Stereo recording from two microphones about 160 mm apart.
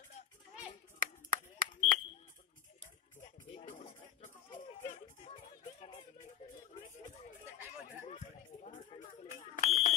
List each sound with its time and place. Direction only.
0.9 s smoke detector: 65° right (ahead or behind)
4.6 s a sound: 50° left (ahead or behind)
8.9 s smoke detector: 40° left (ahead or behind)